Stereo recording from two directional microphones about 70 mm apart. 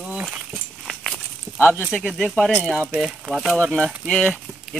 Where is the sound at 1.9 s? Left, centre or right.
Centre.